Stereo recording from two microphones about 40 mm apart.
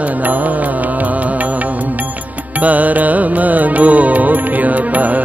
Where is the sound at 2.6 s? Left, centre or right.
Right.